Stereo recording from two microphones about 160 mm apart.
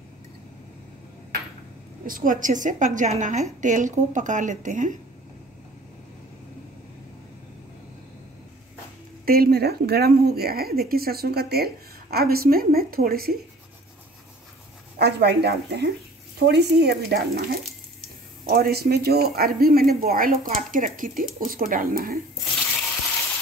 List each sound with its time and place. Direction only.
2.0 s a woman's voice: 60° right (ahead or behind)
9.2 s a woman's voice: 70° right (ahead or behind)
15.0 s speech: 90° right; by 22.2 s 65° right (ahead or behind)